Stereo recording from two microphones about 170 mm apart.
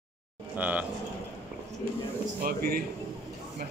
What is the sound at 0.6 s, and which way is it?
Speech, 10° right (ahead or behind).